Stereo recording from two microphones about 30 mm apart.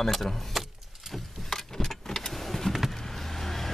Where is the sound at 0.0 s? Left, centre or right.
Centre.